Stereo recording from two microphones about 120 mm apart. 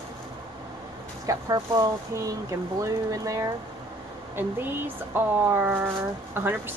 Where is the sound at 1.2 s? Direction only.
30° right (ahead or behind).